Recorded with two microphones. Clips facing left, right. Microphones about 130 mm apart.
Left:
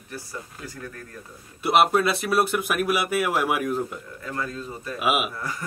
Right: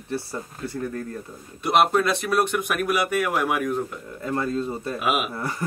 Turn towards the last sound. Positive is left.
turn(degrees=5)  # may be behind; listen again after turning